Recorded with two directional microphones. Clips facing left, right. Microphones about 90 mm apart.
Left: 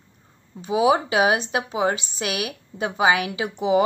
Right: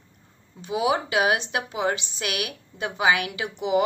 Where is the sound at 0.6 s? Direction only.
30° left (ahead or behind).